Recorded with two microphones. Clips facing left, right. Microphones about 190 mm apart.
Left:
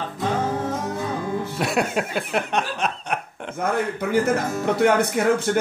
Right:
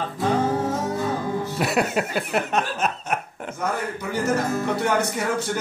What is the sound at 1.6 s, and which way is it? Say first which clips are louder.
Speech: right 1 dB; centre (ahead or behind).